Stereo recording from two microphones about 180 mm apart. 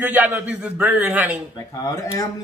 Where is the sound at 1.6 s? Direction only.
20° left (ahead or behind).